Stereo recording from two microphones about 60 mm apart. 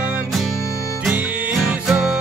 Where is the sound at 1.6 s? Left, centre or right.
Centre.